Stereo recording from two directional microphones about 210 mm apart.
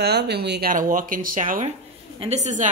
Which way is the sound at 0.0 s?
50° right (ahead or behind).